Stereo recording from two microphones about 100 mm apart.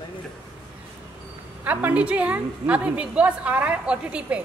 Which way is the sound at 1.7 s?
15° right (ahead or behind).